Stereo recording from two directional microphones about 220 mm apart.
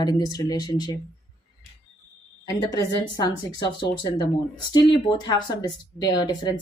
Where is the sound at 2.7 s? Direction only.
15° left (ahead or behind).